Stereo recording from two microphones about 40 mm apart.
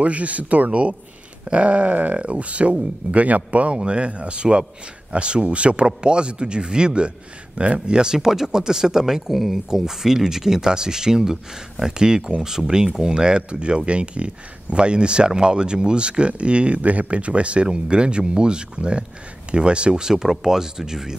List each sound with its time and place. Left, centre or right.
0.0 s speech: right; by 9.2 s centre
9.3 s speech: centre